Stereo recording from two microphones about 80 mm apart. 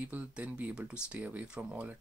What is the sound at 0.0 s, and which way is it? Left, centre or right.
Speech, centre.